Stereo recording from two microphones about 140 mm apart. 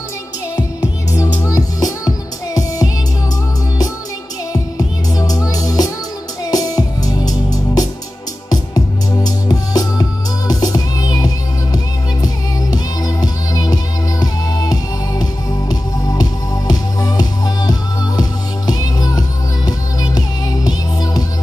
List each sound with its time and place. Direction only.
0.6 s music: 25° left (ahead or behind)
4.5 s music: 25° left (ahead or behind)